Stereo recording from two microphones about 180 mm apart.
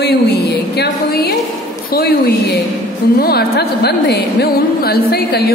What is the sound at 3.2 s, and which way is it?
A woman's voice, 60° left (ahead or behind).